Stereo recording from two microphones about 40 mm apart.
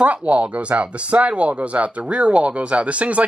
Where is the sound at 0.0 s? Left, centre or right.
Right.